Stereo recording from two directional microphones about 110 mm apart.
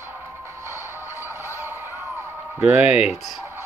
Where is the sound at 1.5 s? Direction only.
25° right (ahead or behind).